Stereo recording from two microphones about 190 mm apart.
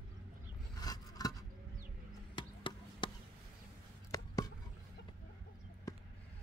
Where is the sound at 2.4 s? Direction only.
25° left (ahead or behind).